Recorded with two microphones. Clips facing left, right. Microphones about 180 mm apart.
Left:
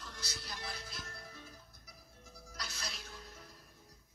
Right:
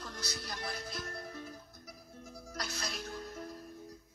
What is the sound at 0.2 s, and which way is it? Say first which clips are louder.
Music: right 5 dB; 45° right (ahead or behind).